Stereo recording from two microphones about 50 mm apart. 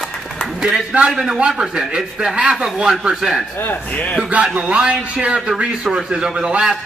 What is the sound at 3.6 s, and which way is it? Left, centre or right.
Speech, left.